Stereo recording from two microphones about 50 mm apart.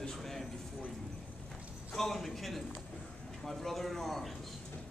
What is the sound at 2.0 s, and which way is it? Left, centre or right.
A man's voice, centre.